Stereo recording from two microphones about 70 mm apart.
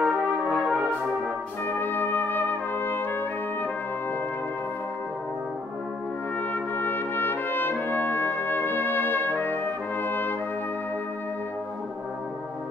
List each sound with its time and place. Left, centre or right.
0.0 s brass instrument: centre
1.7 s trumpet: left
6.5 s trumpet: left